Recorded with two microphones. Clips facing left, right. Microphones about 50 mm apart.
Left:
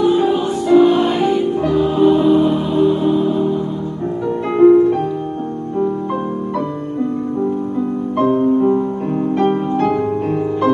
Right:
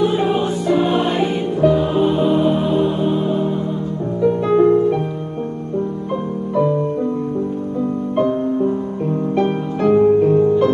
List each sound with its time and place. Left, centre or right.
0.0 s music: centre
4.5 s music: left
8.2 s music: left